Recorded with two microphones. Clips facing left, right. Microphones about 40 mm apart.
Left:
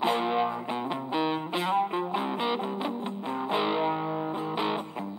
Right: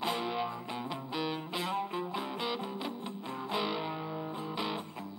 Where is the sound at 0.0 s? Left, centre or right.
Left.